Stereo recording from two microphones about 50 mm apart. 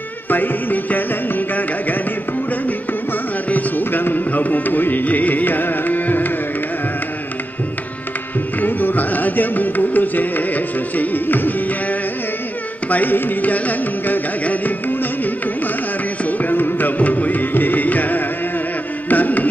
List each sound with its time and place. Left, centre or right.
0.3 s music: left
3.4 s carnatic music: left
8.5 s music: left
19.0 s carnatic music: left